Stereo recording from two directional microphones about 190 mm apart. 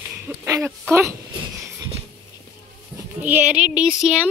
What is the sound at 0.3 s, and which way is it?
Speech, 10° right (ahead or behind).